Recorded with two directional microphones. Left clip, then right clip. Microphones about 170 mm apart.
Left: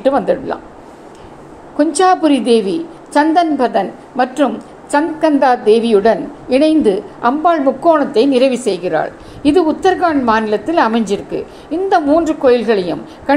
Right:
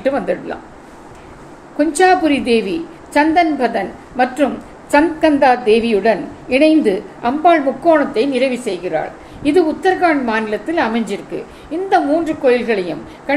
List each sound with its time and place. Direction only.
0.0 s speech: 20° left (ahead or behind)
1.8 s a woman's voice: 20° left (ahead or behind); by 9.5 s 45° left (ahead or behind)
9.5 s a woman's voice: 30° left (ahead or behind)